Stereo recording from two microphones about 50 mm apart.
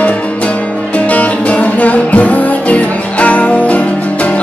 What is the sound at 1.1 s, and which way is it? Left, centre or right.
Music, left.